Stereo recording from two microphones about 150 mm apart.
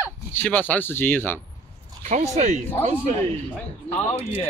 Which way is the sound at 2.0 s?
50° right (ahead or behind).